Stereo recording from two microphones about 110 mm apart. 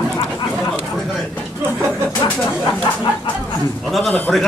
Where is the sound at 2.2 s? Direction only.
40° left (ahead or behind).